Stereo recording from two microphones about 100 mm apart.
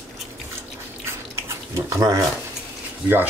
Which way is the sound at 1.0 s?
25° right (ahead or behind).